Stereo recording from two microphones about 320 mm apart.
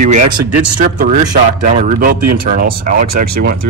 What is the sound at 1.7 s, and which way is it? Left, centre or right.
Speech, right.